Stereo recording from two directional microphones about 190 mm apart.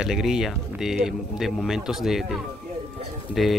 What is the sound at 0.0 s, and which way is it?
Speech, centre (ahead or behind).